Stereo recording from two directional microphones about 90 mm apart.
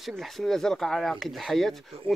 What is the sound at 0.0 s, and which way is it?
Speech, centre (ahead or behind).